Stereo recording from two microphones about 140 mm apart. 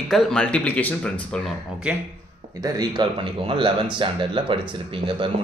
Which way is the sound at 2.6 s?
30° right (ahead or behind).